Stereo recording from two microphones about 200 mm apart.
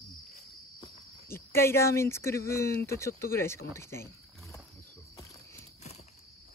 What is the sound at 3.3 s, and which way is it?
Speech, 15° left (ahead or behind).